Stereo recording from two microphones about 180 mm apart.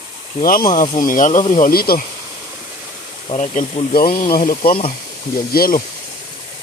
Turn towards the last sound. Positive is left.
turn(degrees=55)  # may be behind; listen again after turning